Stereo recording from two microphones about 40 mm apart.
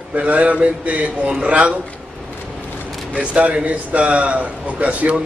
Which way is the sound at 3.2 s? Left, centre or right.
Right.